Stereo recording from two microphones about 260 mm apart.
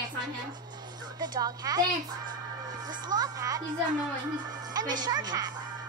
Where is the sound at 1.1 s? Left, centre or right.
Centre.